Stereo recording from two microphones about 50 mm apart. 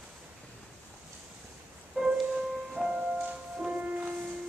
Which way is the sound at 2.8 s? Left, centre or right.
Right.